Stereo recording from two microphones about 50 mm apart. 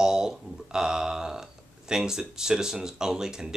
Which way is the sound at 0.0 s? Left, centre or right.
Centre.